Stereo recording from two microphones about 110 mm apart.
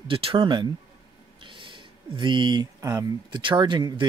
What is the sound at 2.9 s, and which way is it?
Speech, 40° right (ahead or behind).